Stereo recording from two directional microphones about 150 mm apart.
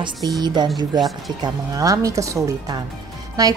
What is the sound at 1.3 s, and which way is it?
A woman's voice, 25° right (ahead or behind).